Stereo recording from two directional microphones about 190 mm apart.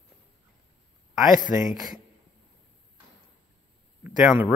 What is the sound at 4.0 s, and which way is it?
Speech, 5° right (ahead or behind).